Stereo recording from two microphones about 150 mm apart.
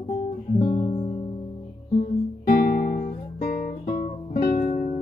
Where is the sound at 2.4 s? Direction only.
70° left (ahead or behind).